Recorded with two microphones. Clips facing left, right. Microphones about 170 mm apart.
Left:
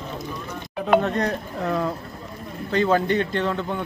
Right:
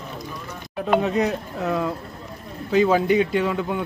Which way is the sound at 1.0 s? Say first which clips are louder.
Right 2 dB; 5° right (ahead or behind).